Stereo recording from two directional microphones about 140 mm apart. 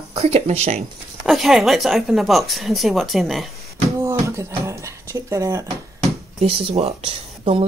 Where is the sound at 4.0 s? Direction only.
20° right (ahead or behind).